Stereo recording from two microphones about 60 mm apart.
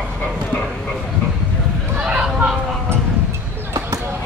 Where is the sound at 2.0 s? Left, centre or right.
Right.